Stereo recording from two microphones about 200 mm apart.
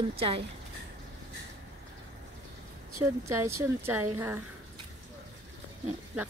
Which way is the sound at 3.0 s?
15° right (ahead or behind).